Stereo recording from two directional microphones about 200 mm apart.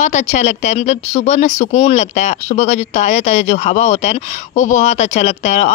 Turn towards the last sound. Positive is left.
turn(degrees=35)  # may be behind; listen again after turning